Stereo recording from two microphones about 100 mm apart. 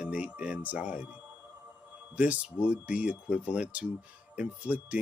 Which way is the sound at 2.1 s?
15° right (ahead or behind).